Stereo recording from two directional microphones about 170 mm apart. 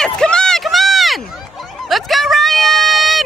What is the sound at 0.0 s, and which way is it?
Run, 5° left (ahead or behind).